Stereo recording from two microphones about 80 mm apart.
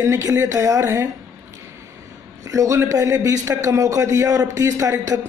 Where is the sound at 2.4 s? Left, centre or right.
Right.